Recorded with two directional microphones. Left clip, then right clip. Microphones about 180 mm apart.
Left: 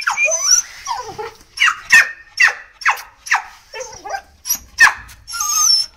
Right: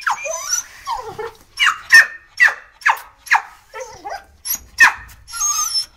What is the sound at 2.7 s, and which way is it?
Dog, 25° left (ahead or behind).